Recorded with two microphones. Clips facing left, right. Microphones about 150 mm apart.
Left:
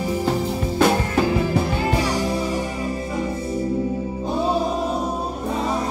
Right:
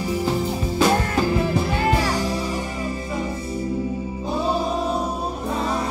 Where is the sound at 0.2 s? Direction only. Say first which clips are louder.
Left 1 dB; 55° left (ahead or behind).